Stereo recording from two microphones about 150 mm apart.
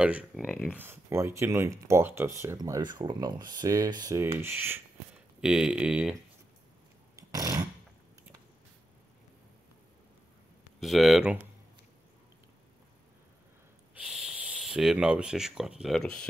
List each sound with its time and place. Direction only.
0.0 s speech: 5° right (ahead or behind)
0.7 s speech: 15° right (ahead or behind)
7.2 s a sound: 25° right (ahead or behind)
10.8 s speech: centre (ahead or behind)
13.9 s speech: 5° right (ahead or behind)